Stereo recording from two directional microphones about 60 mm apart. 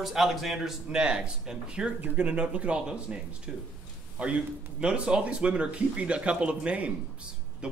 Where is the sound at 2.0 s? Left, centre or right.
Right.